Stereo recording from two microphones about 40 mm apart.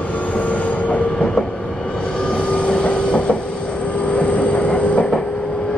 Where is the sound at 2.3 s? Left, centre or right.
Left.